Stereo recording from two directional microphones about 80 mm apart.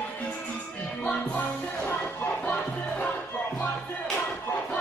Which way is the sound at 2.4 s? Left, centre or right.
Centre.